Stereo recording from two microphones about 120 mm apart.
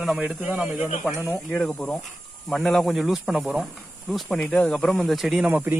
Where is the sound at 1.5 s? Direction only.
10° left (ahead or behind).